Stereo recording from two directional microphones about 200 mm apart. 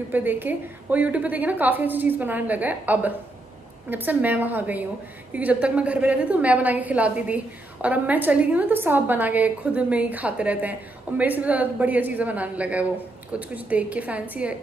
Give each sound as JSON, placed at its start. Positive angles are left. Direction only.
{"t": 0.1, "sound": "a woman's voice", "side_deg": -10}